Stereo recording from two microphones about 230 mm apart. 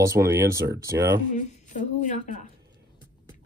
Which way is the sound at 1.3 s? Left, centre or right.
Left.